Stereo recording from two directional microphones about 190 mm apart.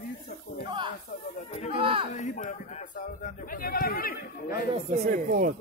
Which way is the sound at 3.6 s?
50° left (ahead or behind).